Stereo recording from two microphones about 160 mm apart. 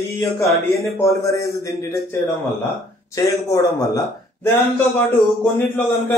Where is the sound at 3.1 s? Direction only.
20° left (ahead or behind).